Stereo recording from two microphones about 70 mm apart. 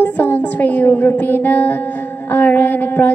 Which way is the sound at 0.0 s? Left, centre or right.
Left.